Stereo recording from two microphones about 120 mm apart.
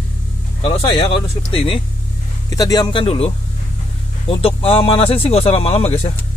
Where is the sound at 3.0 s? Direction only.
50° left (ahead or behind).